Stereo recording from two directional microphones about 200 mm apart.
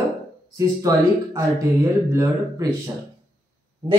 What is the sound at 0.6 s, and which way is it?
Speech, 15° right (ahead or behind).